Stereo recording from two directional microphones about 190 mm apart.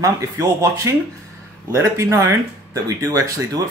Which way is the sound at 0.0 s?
15° right (ahead or behind).